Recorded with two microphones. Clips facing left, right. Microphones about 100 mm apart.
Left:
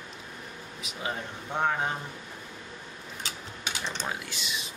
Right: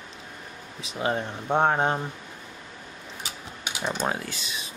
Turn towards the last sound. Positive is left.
turn(degrees=-40)  # may be behind; listen again after turning